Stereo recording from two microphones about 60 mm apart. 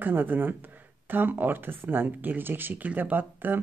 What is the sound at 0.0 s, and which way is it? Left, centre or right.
Speech, right.